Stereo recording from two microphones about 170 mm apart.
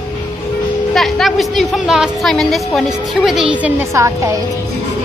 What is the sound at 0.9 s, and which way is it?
A woman's voice, centre (ahead or behind).